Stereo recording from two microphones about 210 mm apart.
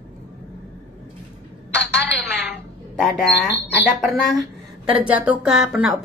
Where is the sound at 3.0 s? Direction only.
Centre (ahead or behind).